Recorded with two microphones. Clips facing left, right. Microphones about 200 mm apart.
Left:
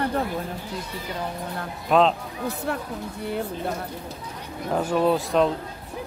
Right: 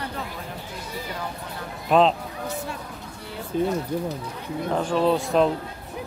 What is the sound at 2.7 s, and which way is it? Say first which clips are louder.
Speech: left 7 dB; 60° left (ahead or behind).